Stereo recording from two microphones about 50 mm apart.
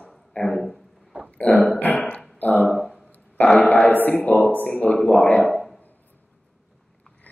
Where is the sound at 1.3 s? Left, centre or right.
Left.